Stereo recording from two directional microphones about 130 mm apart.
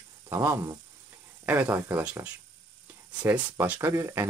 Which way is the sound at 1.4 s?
15° right (ahead or behind).